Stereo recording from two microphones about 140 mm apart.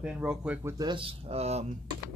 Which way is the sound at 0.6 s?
30° right (ahead or behind).